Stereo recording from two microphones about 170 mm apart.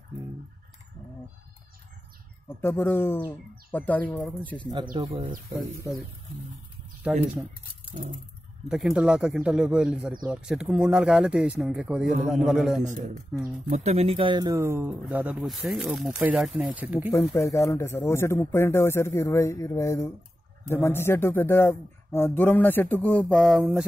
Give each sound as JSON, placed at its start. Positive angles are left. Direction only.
{"t": 2.4, "sound": "a man's voice", "side_deg": 15}
{"t": 4.9, "sound": "speech", "side_deg": -30}
{"t": 7.1, "sound": "speech", "side_deg": 0}
{"t": 7.9, "sound": "a sound", "side_deg": -45}
{"t": 8.6, "sound": "speech", "side_deg": -5}
{"t": 13.7, "sound": "speech", "side_deg": -40}
{"t": 17.3, "sound": "a man's voice", "side_deg": 15}